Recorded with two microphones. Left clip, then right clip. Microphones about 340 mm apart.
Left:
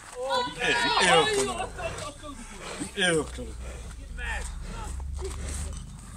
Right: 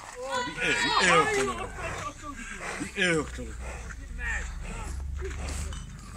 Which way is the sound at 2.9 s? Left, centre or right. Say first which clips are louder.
Left 1 dB; left.